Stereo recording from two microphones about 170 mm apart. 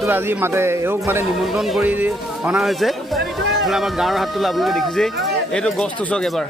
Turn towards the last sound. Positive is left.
turn(degrees=5)  # may be behind; listen again after turning